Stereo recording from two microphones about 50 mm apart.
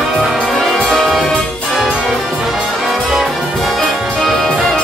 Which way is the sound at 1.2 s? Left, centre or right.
Centre.